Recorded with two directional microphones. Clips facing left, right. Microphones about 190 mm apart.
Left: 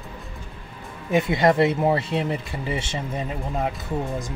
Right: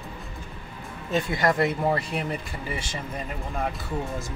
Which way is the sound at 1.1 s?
20° left (ahead or behind).